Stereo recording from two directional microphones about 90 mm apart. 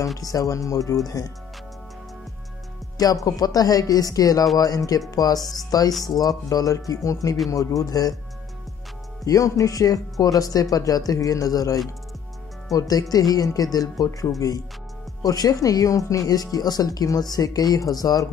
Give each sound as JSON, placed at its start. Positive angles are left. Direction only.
{"t": 0.2, "sound": "speech", "side_deg": 40}
{"t": 3.3, "sound": "speech", "side_deg": 45}
{"t": 9.2, "sound": "speech", "side_deg": 40}